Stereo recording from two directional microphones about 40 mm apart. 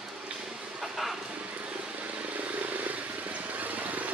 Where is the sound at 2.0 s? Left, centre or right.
Right.